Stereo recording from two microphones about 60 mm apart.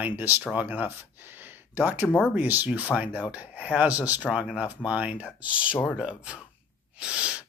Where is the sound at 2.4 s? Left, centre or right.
Right.